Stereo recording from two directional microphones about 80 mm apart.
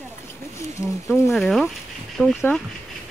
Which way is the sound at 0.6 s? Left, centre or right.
Left.